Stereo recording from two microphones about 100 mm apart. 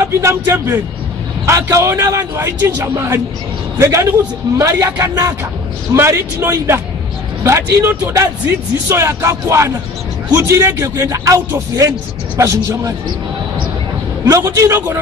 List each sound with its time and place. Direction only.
0.0 s a man's voice: 30° right (ahead or behind)
14.2 s a man's voice: 30° right (ahead or behind)